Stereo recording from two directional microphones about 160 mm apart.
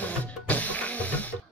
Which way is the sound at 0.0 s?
10° left (ahead or behind).